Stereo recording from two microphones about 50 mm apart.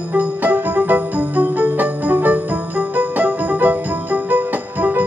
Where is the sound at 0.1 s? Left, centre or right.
Right.